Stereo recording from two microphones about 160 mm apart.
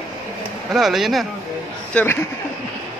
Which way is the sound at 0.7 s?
Centre (ahead or behind).